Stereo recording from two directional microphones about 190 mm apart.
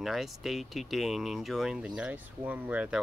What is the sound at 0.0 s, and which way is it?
Speech, centre (ahead or behind).